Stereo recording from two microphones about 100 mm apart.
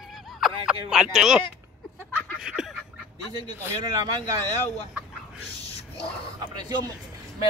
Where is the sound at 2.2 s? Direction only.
10° right (ahead or behind).